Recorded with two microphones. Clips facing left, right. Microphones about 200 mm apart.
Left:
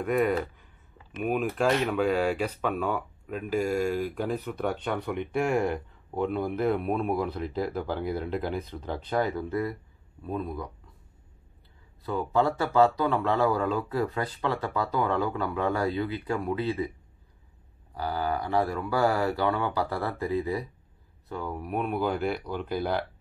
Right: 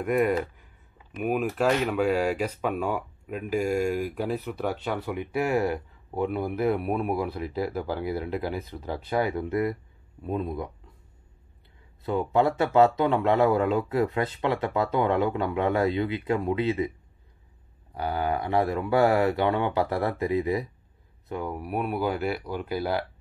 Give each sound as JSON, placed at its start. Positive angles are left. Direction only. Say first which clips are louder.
{"t": 0.0, "sound": "speech", "louder": "right 1 dB", "side_deg": -5}
{"t": 12.0, "sound": "speech", "louder": "right 2 dB", "side_deg": -20}
{"t": 17.9, "sound": "speech", "louder": "right 2 dB", "side_deg": -20}